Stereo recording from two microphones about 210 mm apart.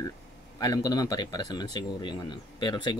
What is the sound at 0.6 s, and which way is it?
Speech, 20° left (ahead or behind).